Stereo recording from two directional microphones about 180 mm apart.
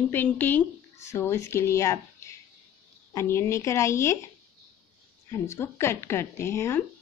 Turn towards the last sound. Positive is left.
turn(degrees=15)  # may be behind; listen again after turning